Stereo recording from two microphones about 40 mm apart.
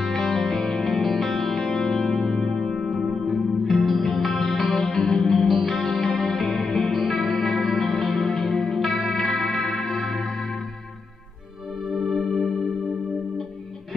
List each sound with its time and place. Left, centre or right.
0.0 s music: centre
0.8 s music: centre
4.8 s music: centre
5.3 s music: centre
11.9 s music: centre